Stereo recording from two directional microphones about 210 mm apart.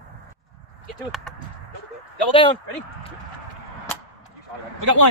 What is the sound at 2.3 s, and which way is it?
Speech, 25° left (ahead or behind).